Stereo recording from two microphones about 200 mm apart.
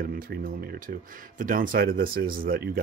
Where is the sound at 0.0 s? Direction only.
45° right (ahead or behind).